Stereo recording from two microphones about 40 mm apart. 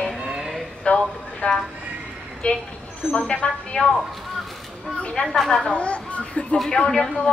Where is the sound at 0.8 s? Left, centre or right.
Left.